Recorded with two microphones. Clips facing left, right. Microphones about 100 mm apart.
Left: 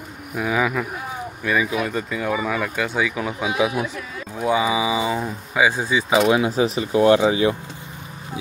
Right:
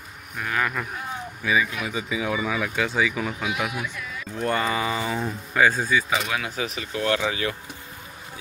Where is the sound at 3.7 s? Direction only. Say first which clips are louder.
Left 6 dB; 30° left (ahead or behind).